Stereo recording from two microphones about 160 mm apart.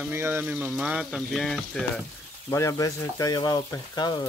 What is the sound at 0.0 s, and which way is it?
Speech, 15° right (ahead or behind).